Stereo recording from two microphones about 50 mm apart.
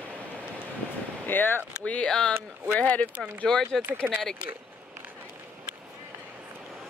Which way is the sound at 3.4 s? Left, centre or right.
Centre.